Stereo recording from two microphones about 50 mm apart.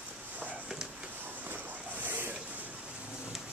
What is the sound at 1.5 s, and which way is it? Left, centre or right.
Boat, right.